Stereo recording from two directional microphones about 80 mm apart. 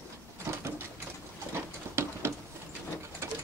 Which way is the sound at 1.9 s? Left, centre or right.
Right.